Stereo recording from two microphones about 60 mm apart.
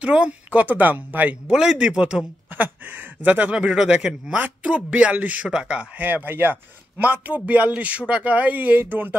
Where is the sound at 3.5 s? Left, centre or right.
Centre.